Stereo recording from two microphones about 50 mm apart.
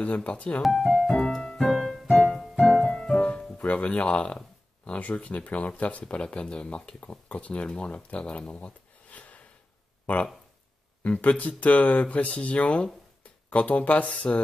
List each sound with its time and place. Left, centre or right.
0.0 s speech: left
0.6 s speech: centre
1.1 s music: centre
3.5 s speech: left
11.1 s speech: left